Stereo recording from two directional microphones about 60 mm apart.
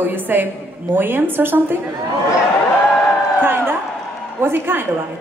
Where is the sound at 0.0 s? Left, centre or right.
Right.